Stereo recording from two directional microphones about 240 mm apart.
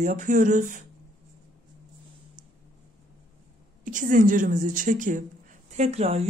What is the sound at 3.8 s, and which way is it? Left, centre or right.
A woman's voice, right.